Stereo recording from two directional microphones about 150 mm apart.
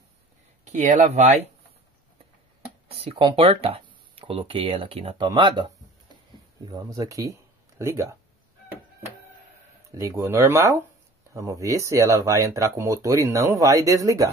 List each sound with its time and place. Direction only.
0.7 s speech: 50° right (ahead or behind)
3.0 s speech: 35° right (ahead or behind)
9.9 s speech: 15° right (ahead or behind)